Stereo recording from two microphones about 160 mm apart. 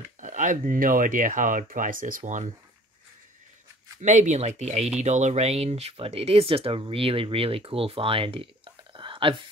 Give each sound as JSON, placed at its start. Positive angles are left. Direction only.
{"t": 0.2, "sound": "speech", "side_deg": -50}
{"t": 4.0, "sound": "speech", "side_deg": -50}